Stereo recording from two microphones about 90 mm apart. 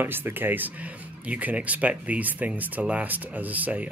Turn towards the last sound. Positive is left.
turn(degrees=-20)  # may be behind; listen again after turning